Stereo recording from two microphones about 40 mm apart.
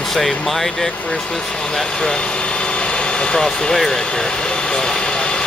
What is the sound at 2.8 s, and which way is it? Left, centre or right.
Vehicle, left.